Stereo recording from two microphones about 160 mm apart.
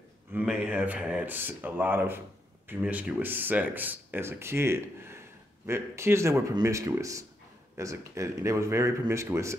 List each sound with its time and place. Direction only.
0.3 s speech: 10° right (ahead or behind)